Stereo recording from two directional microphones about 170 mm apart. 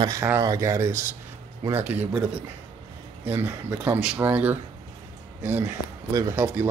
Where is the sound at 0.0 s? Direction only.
15° right (ahead or behind).